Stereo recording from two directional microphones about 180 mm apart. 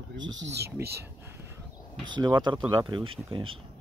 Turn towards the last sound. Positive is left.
turn(degrees=-30)  # may be behind; listen again after turning